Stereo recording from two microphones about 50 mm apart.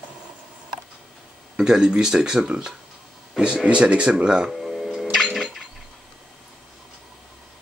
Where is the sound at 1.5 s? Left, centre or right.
Centre.